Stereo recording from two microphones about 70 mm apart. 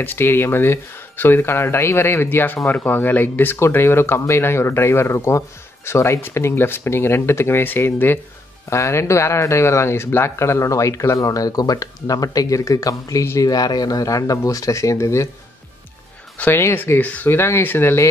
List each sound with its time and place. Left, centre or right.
0.0 s speech: left
3.5 s speech: left
8.6 s speech: left
13.4 s speech: left
16.5 s speech: left